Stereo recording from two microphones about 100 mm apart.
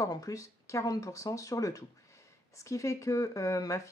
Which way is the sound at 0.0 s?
35° left (ahead or behind).